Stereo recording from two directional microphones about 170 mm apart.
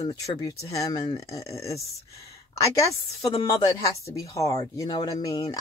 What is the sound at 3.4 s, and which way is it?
Speech, 20° left (ahead or behind).